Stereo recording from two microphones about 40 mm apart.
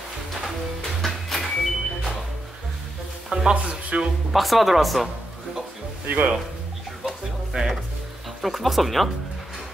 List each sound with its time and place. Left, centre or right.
1.0 s music: centre
3.3 s music: centre
3.5 s speech: right
4.3 s speech: centre
6.0 s speech: right
7.1 s music: centre
8.4 s speech: centre